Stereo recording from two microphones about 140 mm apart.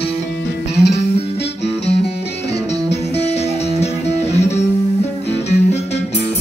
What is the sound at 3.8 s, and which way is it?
Music, 50° left (ahead or behind).